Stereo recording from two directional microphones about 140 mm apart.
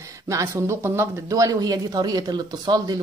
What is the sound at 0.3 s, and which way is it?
Speech, 20° right (ahead or behind).